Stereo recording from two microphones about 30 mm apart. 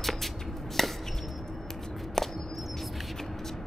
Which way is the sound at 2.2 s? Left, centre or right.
Centre.